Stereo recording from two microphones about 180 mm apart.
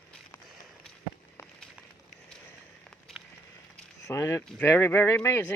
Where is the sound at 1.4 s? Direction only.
15° left (ahead or behind).